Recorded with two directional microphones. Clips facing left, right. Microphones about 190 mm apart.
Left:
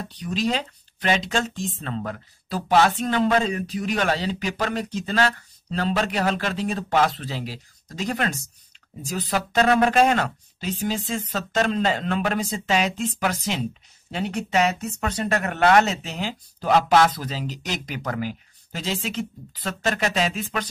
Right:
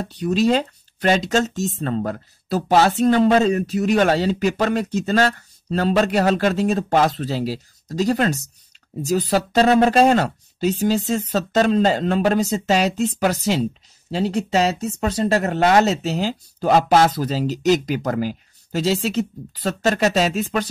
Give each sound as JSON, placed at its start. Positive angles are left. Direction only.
{"t": 0.2, "sound": "speech", "side_deg": -45}